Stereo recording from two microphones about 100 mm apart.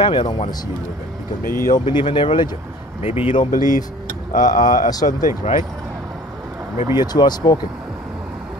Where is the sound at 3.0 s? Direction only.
75° left (ahead or behind).